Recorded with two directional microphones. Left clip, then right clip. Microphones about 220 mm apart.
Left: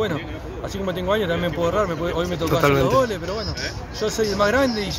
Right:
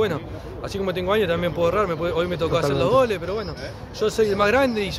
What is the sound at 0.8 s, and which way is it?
Speech, 25° right (ahead or behind).